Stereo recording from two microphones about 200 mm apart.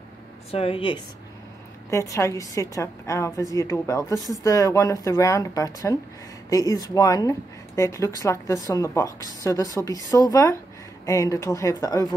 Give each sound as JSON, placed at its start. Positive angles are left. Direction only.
{"t": 0.5, "sound": "speech", "side_deg": 30}
{"t": 1.9, "sound": "speech", "side_deg": 15}